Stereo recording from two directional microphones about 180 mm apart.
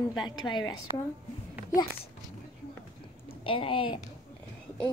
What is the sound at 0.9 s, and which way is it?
Speech, 20° right (ahead or behind).